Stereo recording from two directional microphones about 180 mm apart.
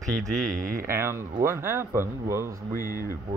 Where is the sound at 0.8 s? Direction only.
15° right (ahead or behind).